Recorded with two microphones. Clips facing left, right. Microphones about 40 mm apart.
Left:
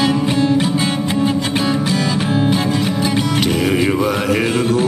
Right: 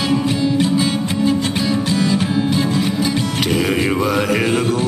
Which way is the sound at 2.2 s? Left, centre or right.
Centre.